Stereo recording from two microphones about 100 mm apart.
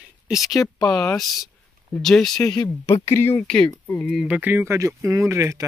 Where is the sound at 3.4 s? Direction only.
10° left (ahead or behind).